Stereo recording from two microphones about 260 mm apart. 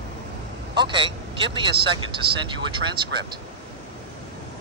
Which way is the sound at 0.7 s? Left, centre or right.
Centre.